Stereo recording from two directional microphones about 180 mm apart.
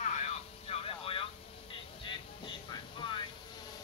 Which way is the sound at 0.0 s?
40° left (ahead or behind).